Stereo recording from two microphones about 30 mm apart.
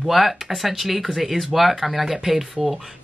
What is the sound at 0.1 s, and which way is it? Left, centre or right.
Speech, centre.